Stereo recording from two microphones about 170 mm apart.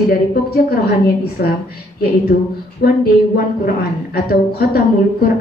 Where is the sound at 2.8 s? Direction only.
60° left (ahead or behind).